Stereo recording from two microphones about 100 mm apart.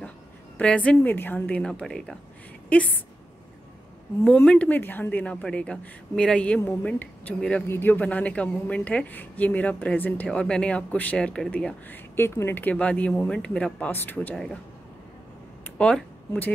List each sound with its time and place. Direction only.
0.6 s speech: 10° left (ahead or behind)
4.3 s speech: 15° left (ahead or behind)
11.9 s speech: 25° left (ahead or behind)
14.3 s speech: 5° left (ahead or behind)
15.8 s speech: 15° left (ahead or behind)